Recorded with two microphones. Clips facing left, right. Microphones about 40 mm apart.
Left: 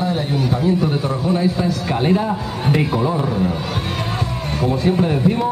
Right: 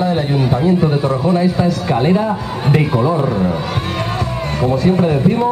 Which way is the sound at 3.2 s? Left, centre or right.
Centre.